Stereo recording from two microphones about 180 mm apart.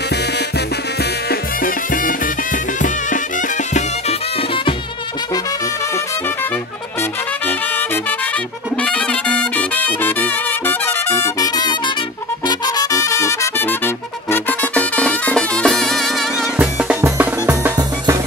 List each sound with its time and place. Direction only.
1.3 s music: 50° left (ahead or behind)
3.7 s music: 35° left (ahead or behind)
7.0 s brass instrument: 10° left (ahead or behind)
8.8 s music: 5° left (ahead or behind)
16.5 s music: 10° right (ahead or behind)